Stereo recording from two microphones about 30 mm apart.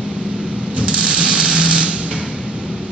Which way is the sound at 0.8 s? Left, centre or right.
Right.